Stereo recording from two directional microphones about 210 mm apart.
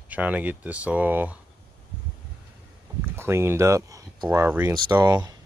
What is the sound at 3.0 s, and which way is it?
Speech, 10° right (ahead or behind).